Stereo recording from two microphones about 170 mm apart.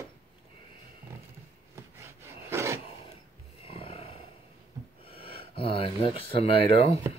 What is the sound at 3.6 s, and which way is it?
Roar, 35° left (ahead or behind).